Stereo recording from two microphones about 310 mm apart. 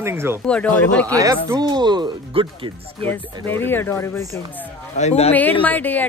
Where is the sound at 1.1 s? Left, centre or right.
Centre.